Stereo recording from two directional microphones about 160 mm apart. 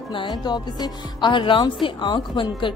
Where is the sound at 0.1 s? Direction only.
30° left (ahead or behind).